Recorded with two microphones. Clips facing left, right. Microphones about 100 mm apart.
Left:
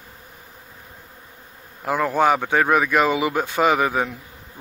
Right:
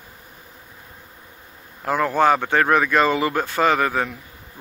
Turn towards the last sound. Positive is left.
turn(degrees=10)  # may be behind; listen again after turning